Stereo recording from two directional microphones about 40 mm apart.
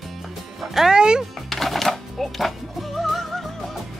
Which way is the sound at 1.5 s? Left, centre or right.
Centre.